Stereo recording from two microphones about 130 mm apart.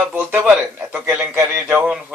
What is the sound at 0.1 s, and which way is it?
A man's voice, 15° right (ahead or behind).